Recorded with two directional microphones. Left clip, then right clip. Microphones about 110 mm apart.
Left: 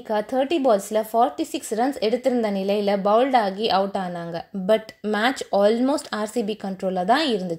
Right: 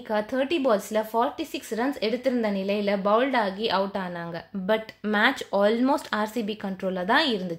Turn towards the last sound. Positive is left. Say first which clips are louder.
# left 3 dB
turn(degrees=25)  # may be behind; listen again after turning